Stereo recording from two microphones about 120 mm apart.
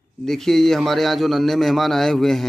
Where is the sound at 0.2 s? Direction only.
5° left (ahead or behind).